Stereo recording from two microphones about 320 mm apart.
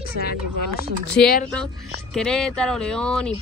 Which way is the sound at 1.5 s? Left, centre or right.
Centre.